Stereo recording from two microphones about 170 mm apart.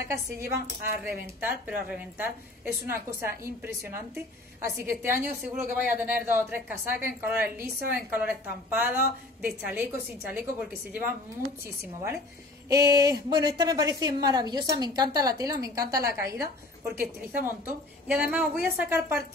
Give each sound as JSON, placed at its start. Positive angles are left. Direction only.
{"t": 0.1, "sound": "a woman's voice", "side_deg": -15}
{"t": 12.6, "sound": "a woman's voice", "side_deg": -20}